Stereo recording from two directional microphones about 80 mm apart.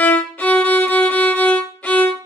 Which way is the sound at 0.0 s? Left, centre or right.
Left.